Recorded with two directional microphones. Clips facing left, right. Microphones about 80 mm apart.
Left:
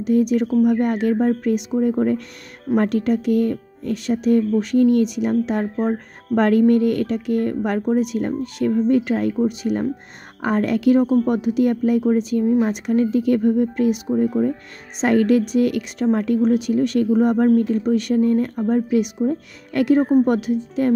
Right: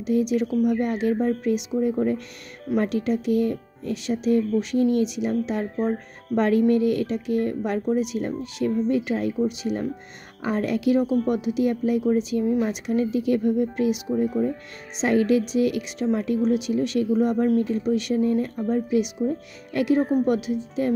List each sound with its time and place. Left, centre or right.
0.0 s a woman's voice: left
12.4 s a woman's voice: left
13.1 s a woman's voice: left